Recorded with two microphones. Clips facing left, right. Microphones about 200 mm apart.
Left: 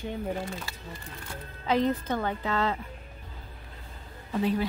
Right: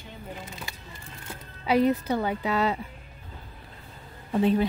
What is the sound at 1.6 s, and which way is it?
A woman's voice, 10° right (ahead or behind).